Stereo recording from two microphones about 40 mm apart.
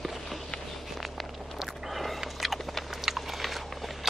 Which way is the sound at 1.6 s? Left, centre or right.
Centre.